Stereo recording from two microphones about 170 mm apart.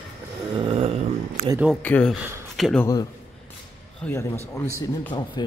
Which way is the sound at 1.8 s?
10° left (ahead or behind).